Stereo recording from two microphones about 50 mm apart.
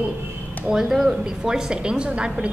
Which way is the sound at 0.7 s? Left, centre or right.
Centre.